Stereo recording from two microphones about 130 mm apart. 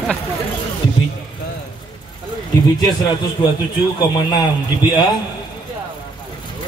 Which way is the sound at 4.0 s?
30° left (ahead or behind).